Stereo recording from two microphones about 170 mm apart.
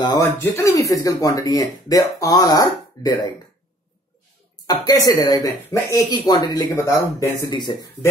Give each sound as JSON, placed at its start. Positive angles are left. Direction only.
{"t": 0.0, "sound": "speech", "side_deg": 20}
{"t": 4.6, "sound": "speech", "side_deg": 20}